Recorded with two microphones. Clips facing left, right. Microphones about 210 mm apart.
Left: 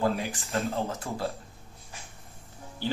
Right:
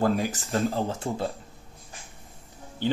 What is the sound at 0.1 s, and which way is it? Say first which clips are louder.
Speech: right 5 dB; 50° right (ahead or behind).